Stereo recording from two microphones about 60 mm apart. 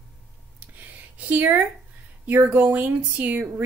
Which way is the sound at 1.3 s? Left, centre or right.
Right.